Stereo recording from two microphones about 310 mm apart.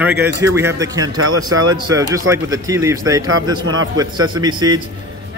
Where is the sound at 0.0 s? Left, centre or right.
Centre.